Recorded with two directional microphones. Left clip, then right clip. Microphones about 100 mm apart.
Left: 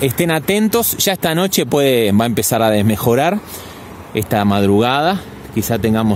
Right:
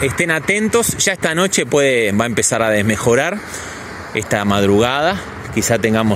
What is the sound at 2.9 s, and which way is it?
Speech, 50° left (ahead or behind).